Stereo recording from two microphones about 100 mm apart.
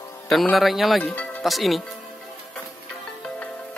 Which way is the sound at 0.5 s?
Centre (ahead or behind).